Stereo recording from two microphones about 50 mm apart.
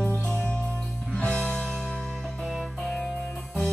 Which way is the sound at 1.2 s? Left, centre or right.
Left.